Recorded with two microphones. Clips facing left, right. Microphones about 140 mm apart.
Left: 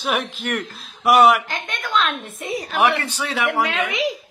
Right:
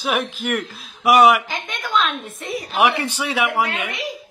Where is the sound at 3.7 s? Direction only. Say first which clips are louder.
Left 5 dB; 90° left.